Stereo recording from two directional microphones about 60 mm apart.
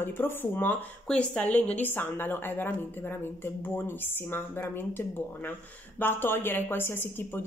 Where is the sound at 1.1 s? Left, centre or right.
Left.